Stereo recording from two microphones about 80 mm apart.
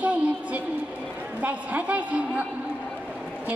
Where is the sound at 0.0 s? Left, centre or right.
Centre.